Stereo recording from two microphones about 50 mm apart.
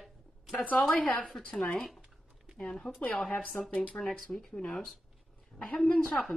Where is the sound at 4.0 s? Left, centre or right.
Left.